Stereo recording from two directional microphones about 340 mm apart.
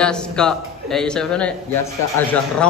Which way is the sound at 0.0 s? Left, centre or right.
Centre.